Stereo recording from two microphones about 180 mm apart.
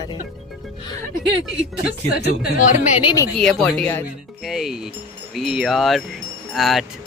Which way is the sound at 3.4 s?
5° left (ahead or behind).